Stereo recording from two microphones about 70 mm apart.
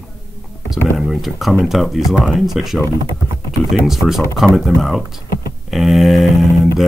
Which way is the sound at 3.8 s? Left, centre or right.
Centre.